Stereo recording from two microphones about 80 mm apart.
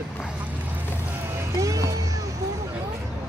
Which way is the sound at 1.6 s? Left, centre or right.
Right.